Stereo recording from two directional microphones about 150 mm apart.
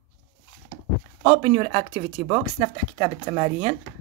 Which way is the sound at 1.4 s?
50° right (ahead or behind).